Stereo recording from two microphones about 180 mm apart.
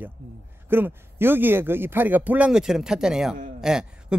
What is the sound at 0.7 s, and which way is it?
A woman's voice, 10° right (ahead or behind).